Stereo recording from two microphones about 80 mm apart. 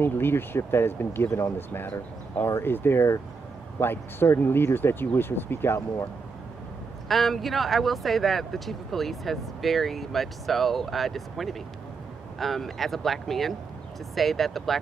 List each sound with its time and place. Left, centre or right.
0.0 s speech: left
7.1 s speech: centre